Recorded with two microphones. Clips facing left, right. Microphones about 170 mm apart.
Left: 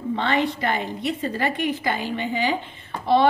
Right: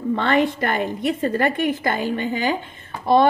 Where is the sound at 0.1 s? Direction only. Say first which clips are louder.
Right 4 dB; 50° right (ahead or behind).